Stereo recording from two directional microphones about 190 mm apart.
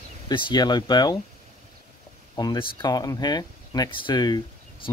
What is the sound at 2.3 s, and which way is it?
Speech, 20° left (ahead or behind).